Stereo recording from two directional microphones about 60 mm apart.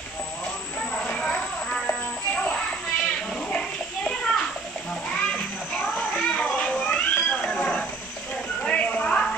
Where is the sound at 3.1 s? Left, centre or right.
Centre.